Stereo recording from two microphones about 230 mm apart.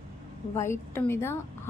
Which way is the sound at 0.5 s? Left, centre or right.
Centre.